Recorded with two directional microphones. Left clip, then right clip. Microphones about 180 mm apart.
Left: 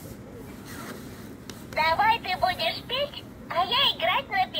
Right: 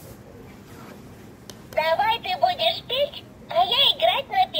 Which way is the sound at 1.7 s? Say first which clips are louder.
Right 1 dB; 10° right (ahead or behind).